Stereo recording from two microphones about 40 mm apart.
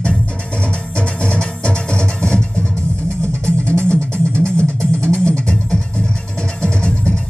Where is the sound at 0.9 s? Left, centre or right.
Left.